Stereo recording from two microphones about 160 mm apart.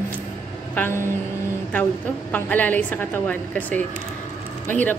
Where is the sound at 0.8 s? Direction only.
10° left (ahead or behind).